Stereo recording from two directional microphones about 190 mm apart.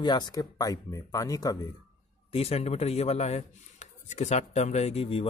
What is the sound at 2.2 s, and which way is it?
Speech, 30° left (ahead or behind).